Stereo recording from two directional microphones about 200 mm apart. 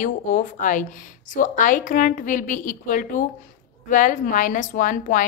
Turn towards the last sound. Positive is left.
turn(degrees=40)  # may be behind; listen again after turning